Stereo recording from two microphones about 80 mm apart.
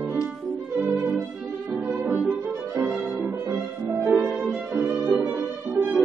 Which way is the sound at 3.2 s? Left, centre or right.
Right.